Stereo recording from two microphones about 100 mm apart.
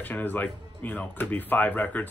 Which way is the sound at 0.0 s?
20° left (ahead or behind).